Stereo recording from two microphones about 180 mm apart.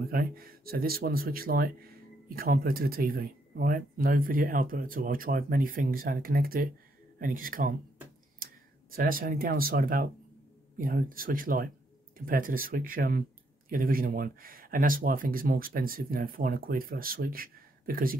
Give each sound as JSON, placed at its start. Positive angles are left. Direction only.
{"t": 0.1, "sound": "speech", "side_deg": -55}
{"t": 8.9, "sound": "speech", "side_deg": -50}